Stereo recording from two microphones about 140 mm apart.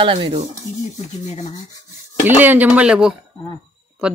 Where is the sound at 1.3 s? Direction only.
60° left (ahead or behind).